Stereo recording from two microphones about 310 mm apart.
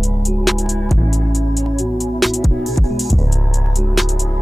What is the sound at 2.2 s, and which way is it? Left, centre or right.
Music, centre.